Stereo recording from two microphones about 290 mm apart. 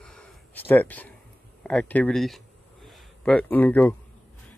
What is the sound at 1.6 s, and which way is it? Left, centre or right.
Speech, centre.